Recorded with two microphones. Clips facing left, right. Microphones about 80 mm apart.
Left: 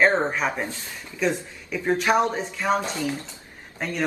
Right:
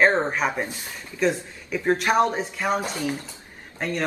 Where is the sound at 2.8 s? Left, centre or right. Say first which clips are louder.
Even; centre.